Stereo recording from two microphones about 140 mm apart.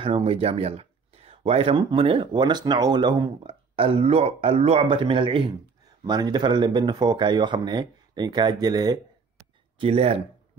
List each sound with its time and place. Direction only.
0.0 s speech: 45° right (ahead or behind)
9.8 s speech: 45° right (ahead or behind)